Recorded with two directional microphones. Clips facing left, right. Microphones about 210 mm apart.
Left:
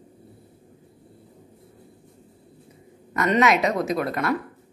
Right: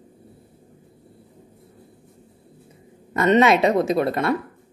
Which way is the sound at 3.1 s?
30° right (ahead or behind).